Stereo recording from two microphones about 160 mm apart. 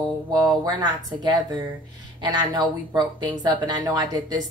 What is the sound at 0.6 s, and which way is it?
Speech, 25° right (ahead or behind).